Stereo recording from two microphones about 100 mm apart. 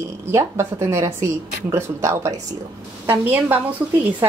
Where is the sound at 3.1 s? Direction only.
20° right (ahead or behind).